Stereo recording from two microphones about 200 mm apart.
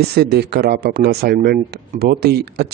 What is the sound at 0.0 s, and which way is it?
Speech, 55° right (ahead or behind).